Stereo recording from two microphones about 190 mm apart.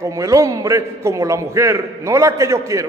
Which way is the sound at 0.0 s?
15° right (ahead or behind).